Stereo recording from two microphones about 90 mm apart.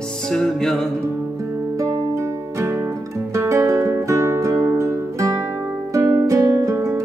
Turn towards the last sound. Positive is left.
turn(degrees=-30)  # may be behind; listen again after turning